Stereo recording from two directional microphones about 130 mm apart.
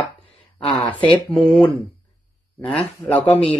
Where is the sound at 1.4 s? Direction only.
40° left (ahead or behind).